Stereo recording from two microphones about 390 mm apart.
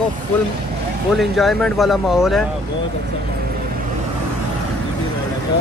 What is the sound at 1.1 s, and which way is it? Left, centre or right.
Speech, centre.